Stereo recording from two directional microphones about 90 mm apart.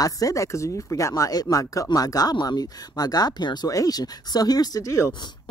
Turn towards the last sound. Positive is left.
turn(degrees=35)  # may be behind; listen again after turning